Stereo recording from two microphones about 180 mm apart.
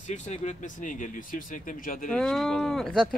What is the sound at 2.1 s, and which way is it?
Speech, 5° left (ahead or behind).